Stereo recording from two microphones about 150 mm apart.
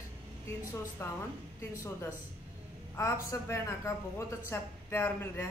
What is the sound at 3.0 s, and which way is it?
A woman's voice, 20° left (ahead or behind).